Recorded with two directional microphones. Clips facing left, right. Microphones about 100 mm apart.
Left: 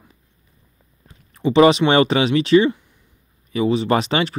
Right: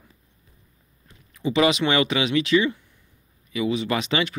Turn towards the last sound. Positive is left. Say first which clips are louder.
# left 6 dB
turn(degrees=35)  # may be behind; listen again after turning